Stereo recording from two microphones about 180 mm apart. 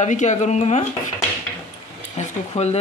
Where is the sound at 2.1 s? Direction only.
35° left (ahead or behind).